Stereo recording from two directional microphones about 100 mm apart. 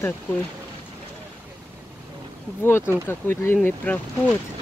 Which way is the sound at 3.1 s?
20° left (ahead or behind).